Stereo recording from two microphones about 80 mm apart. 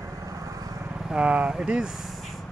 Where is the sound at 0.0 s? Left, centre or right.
Right.